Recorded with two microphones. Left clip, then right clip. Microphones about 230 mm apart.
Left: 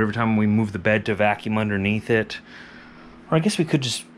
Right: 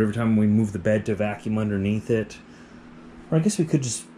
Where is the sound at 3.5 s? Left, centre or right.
Left.